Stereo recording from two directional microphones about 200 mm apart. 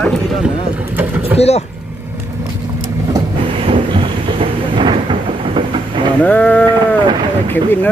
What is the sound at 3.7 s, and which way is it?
Thunder, 25° right (ahead or behind).